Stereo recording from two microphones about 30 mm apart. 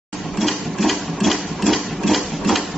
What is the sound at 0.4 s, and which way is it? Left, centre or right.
Sewing machine, centre.